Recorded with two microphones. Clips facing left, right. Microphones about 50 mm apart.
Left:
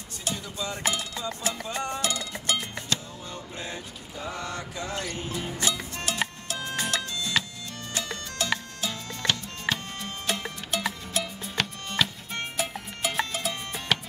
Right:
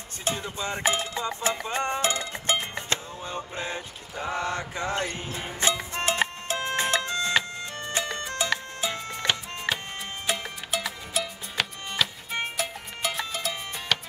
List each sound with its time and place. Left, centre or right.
0.2 s music: right; by 9.8 s centre
10.2 s music: centre
12.5 s music: centre